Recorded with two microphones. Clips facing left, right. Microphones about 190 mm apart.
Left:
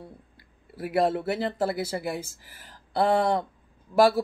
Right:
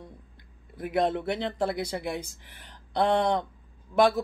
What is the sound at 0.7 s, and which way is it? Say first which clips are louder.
A man's voice: left 2 dB; 5° left (ahead or behind).